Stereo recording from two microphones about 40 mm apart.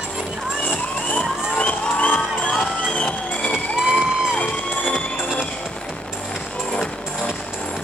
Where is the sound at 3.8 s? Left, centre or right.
Right.